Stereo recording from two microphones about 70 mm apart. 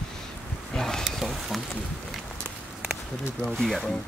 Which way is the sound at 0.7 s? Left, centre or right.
Centre.